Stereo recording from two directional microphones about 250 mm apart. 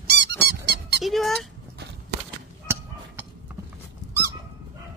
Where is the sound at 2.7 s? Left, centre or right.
Centre.